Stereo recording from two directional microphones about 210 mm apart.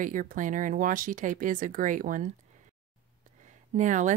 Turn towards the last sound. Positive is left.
turn(degrees=-35)  # may be behind; listen again after turning